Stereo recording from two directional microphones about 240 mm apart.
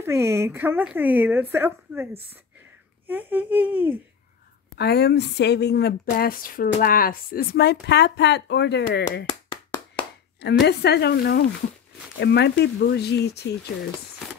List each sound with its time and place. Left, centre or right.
0.0 s speech: centre
3.1 s speech: centre
4.7 s speech: left
10.4 s speech: left